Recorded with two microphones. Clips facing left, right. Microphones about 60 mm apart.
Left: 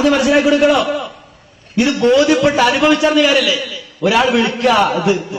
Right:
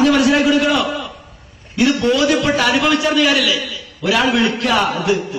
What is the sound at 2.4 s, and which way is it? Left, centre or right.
Speech, centre.